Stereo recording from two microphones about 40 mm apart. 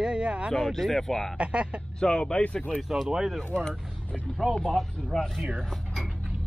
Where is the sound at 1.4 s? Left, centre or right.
Right.